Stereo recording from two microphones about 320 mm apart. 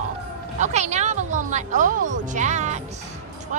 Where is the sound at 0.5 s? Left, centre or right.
Right.